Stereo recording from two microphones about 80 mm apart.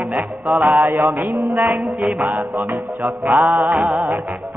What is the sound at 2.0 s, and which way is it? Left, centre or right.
Music, centre.